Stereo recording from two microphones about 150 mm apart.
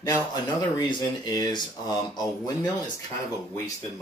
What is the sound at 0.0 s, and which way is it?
Speech, 25° left (ahead or behind).